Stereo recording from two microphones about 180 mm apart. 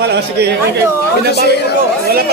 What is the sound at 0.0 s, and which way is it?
Speech, 65° right (ahead or behind).